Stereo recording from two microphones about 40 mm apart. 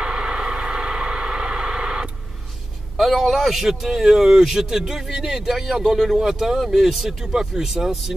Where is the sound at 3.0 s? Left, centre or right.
Centre.